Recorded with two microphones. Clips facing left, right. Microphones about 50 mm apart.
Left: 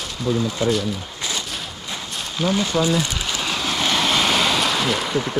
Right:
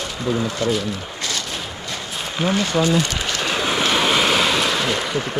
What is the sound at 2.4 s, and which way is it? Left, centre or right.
Speech, right.